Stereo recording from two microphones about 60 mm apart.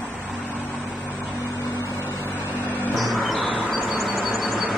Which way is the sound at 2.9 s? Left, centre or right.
Centre.